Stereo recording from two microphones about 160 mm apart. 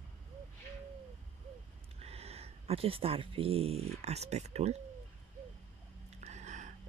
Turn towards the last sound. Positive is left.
turn(degrees=-50)  # may be behind; listen again after turning